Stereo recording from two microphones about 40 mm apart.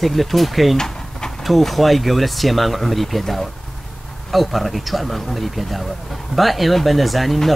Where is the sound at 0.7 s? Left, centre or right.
Centre.